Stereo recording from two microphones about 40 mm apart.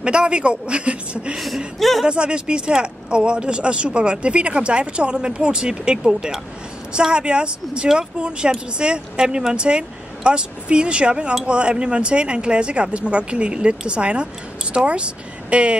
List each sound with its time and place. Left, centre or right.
0.0 s speech: right
1.3 s speech: centre
2.0 s speech: right